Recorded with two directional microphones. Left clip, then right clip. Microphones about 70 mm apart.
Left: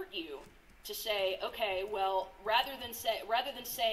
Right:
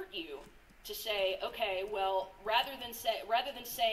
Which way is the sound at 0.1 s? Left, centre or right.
Left.